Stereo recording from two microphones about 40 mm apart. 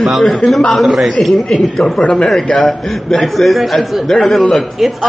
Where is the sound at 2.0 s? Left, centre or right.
Left.